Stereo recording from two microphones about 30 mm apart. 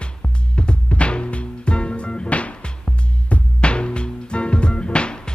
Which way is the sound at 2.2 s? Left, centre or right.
Left.